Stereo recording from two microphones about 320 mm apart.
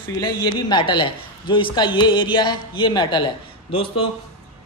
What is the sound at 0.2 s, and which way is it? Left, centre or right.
A man's voice, centre.